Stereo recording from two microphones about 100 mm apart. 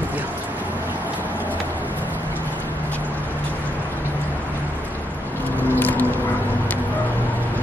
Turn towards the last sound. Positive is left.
turn(degrees=20)  # may be behind; listen again after turning